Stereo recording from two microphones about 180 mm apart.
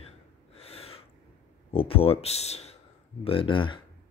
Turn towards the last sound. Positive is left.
turn(degrees=25)  # may be behind; listen again after turning